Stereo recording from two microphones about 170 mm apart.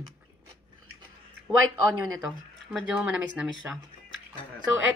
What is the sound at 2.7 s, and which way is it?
A woman's voice, 5° right (ahead or behind).